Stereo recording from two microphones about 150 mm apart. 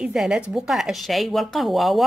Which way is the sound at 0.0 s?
5° right (ahead or behind).